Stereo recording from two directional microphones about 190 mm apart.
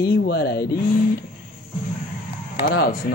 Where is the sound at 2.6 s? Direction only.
50° left (ahead or behind).